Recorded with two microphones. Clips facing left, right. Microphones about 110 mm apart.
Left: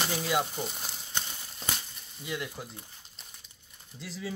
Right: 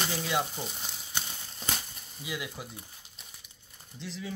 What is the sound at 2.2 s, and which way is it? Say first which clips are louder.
Speech: left 1 dB; 5° right (ahead or behind).